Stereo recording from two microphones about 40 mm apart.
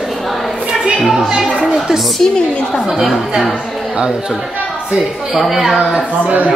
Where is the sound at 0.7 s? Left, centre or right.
Centre.